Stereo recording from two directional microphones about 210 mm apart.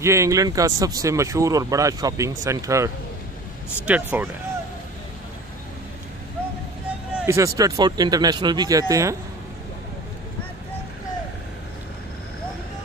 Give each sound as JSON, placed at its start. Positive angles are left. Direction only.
{"t": 0.0, "sound": "speech", "side_deg": -15}
{"t": 7.2, "sound": "speech", "side_deg": -15}